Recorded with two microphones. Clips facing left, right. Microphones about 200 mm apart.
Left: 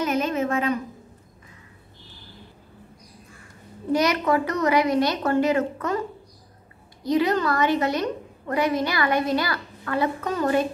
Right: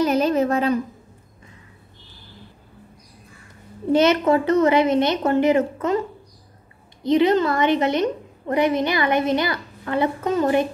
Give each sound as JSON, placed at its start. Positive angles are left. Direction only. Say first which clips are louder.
{"t": 0.0, "sound": "a sound", "louder": "right 5 dB", "side_deg": -35}
{"t": 3.9, "sound": "a woman's voice", "louder": "right 5 dB", "side_deg": -25}
{"t": 7.0, "sound": "a woman's voice", "louder": "right 5 dB", "side_deg": -25}